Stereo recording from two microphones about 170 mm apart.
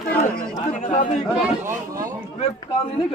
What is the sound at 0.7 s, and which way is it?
Speech, 50° left (ahead or behind).